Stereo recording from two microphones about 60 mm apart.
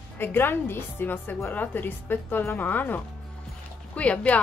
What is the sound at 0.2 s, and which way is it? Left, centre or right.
Speech, left.